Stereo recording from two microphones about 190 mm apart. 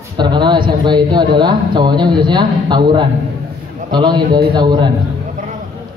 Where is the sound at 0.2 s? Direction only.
25° right (ahead or behind).